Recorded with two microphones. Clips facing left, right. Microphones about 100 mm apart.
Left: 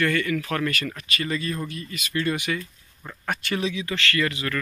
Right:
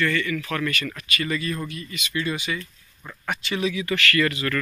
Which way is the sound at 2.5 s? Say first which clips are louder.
Left 2 dB; 15° left (ahead or behind).